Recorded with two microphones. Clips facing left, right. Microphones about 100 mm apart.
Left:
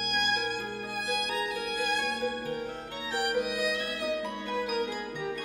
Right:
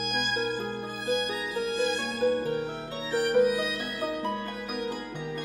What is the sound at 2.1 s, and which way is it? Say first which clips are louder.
Music: right 6 dB; 40° right (ahead or behind).